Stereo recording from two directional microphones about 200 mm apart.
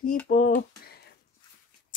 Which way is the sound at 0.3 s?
45° left (ahead or behind).